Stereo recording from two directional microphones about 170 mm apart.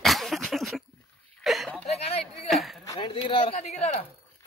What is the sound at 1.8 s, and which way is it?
Speech, 40° left (ahead or behind).